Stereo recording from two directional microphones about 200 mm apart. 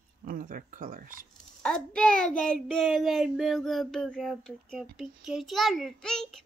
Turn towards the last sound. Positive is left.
turn(degrees=0)  # may be behind; listen again after turning